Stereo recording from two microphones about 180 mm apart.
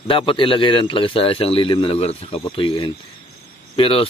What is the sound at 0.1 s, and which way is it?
A man's voice, 30° left (ahead or behind).